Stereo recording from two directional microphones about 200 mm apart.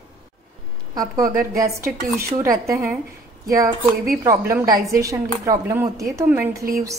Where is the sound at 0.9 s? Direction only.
15° right (ahead or behind).